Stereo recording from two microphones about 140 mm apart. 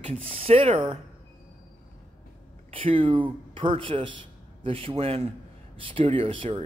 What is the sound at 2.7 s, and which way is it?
A man's voice, 40° right (ahead or behind).